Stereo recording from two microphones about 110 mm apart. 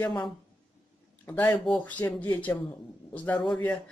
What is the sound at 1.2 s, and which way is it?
Speech, 15° left (ahead or behind).